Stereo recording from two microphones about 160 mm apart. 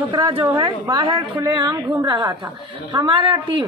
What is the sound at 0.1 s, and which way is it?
A woman's voice, 30° right (ahead or behind).